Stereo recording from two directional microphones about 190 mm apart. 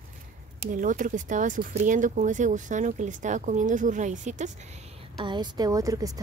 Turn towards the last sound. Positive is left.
turn(degrees=-15)  # may be behind; listen again after turning